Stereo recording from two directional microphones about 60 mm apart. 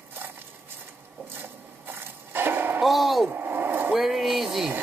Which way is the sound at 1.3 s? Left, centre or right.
Right.